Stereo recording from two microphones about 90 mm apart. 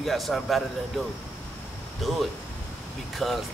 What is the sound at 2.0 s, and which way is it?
Speech, centre (ahead or behind).